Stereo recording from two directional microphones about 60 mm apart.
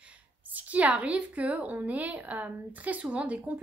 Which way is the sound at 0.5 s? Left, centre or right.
Right.